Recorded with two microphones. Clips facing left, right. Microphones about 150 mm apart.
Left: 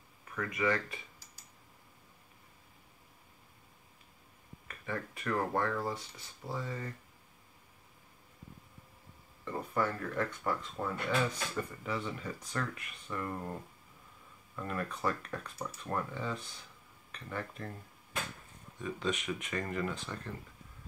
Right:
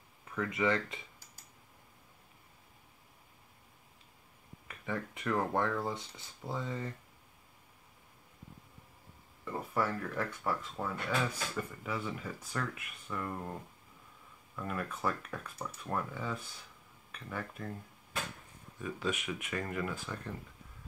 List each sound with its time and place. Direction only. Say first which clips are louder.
0.4 s speech: right 1 dB; 25° right (ahead or behind)
4.6 s speech: right 1 dB; 15° right (ahead or behind)
9.4 s speech: left 1 dB; 10° right (ahead or behind)
18.8 s speech: left 1 dB; 5° right (ahead or behind)